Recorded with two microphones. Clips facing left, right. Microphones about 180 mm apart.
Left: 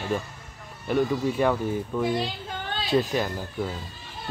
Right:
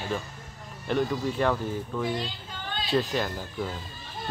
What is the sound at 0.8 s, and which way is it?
Speech, 10° left (ahead or behind).